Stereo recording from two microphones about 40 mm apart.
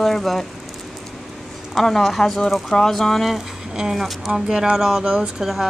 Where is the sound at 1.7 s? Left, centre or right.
Centre.